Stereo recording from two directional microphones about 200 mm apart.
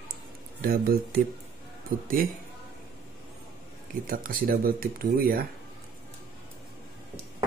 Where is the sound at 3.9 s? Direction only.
45° right (ahead or behind).